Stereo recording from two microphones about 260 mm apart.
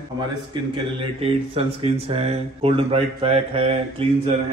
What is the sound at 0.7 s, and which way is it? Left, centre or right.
Speech, right.